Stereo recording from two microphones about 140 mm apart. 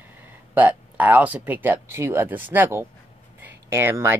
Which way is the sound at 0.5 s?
10° right (ahead or behind).